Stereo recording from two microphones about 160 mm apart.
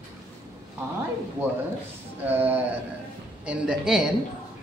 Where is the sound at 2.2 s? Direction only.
10° right (ahead or behind).